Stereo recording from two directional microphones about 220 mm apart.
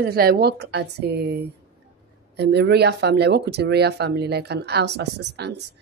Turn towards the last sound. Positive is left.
turn(degrees=-50)  # may be behind; listen again after turning